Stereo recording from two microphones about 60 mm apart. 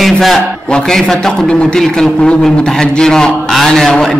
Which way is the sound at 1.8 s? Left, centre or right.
Centre.